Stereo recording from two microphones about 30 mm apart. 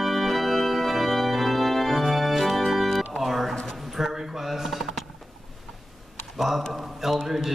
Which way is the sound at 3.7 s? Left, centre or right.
Centre.